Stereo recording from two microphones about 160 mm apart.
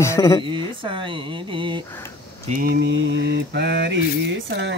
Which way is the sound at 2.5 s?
70° right (ahead or behind).